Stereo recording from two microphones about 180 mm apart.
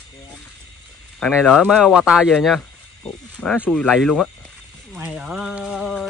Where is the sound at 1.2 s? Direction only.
5° left (ahead or behind).